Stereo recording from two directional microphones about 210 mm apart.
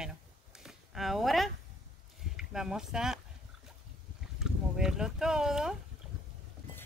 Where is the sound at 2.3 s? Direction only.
5° right (ahead or behind).